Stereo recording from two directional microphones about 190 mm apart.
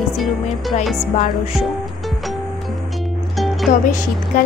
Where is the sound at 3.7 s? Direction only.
40° left (ahead or behind).